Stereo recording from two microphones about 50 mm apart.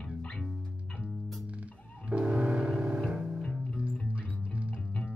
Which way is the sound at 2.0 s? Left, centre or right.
Right.